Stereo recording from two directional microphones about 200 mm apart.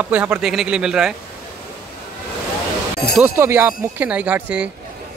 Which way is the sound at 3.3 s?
10° right (ahead or behind).